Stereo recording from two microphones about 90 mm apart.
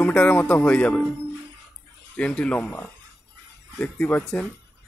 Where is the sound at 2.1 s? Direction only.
15° left (ahead or behind).